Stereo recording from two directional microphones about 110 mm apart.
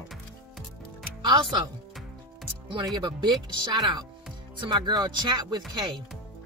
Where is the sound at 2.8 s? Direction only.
40° right (ahead or behind).